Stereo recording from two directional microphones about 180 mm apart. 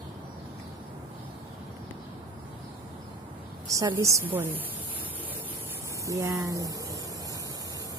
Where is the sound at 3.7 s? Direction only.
20° right (ahead or behind).